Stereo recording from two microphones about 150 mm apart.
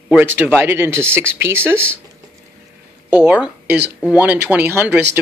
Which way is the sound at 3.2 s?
10° right (ahead or behind).